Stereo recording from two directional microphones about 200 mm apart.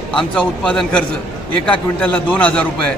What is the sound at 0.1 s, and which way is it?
A man's voice, 5° left (ahead or behind).